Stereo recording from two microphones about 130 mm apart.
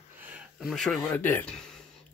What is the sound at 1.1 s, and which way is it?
Speech, 15° left (ahead or behind).